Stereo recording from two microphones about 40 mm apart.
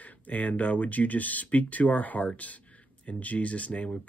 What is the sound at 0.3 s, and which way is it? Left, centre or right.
Speech, left.